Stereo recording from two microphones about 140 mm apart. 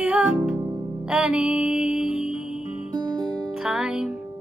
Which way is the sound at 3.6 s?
5° right (ahead or behind).